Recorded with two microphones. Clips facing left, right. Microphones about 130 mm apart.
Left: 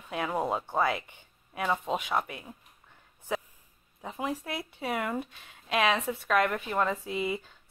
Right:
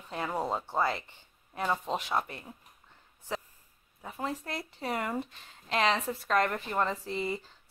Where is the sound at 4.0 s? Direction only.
15° left (ahead or behind).